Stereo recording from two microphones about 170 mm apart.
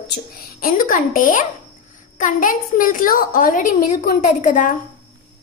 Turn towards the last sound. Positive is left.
turn(degrees=50)  # may be behind; listen again after turning